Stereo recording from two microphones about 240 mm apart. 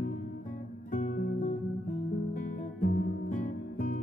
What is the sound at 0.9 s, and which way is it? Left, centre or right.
Music, left.